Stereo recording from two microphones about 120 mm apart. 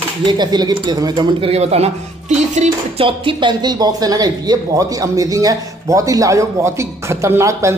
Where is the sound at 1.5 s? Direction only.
60° right (ahead or behind); by 2.7 s 75° right (ahead or behind).